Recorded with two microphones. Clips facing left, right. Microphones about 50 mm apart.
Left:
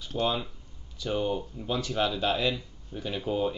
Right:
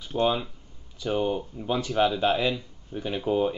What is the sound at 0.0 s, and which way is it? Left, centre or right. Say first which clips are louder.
Speech: right 4 dB; centre.